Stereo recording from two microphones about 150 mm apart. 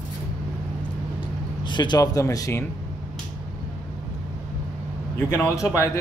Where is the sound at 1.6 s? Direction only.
30° left (ahead or behind).